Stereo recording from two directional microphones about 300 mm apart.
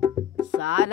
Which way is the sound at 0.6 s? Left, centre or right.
Left.